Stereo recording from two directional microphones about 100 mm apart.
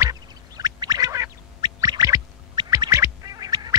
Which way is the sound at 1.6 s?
40° right (ahead or behind).